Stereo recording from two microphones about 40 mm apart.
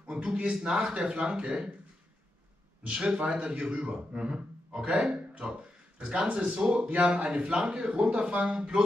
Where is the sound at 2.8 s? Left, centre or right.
Right.